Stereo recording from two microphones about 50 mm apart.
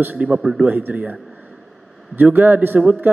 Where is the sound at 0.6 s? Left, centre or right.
Right.